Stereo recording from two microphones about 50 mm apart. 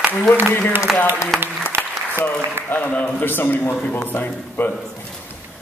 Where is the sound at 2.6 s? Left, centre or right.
Right.